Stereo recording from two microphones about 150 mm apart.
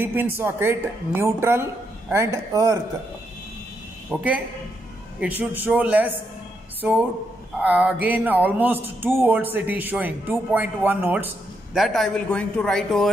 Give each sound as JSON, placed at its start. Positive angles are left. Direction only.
{"t": 0.0, "sound": "speech", "side_deg": -15}
{"t": 4.1, "sound": "speech", "side_deg": -10}
{"t": 5.4, "sound": "speech", "side_deg": -10}
{"t": 11.7, "sound": "a man's voice", "side_deg": 0}